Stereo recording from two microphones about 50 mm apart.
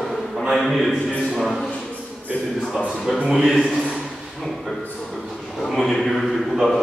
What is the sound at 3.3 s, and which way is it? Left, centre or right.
Speech, centre.